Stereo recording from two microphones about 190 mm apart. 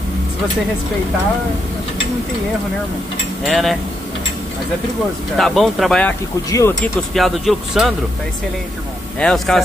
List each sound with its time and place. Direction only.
3.4 s speech: centre (ahead or behind)
5.4 s speech: centre (ahead or behind)
6.5 s speech: 15° left (ahead or behind)
7.2 s speech: centre (ahead or behind)
9.2 s speech: 5° left (ahead or behind)